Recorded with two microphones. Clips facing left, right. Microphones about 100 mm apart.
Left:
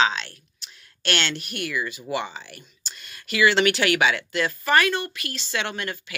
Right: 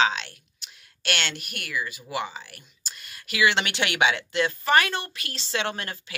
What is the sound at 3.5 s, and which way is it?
Speech, 20° right (ahead or behind).